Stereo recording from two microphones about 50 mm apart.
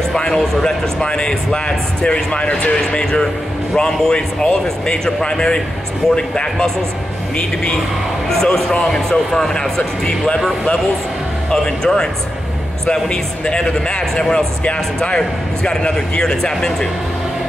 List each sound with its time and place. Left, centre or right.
0.1 s speech: centre
11.5 s speech: centre